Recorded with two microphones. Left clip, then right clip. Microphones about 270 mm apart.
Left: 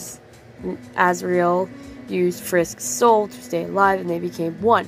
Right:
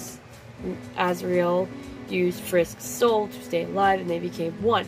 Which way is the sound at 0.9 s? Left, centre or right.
Centre.